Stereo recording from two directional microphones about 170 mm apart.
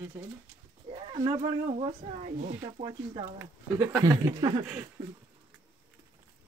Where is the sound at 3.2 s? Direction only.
20° right (ahead or behind).